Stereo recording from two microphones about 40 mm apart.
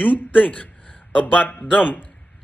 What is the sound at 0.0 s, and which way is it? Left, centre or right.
Speech, left.